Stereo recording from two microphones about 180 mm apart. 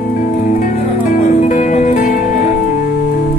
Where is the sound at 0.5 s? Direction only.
45° left (ahead or behind).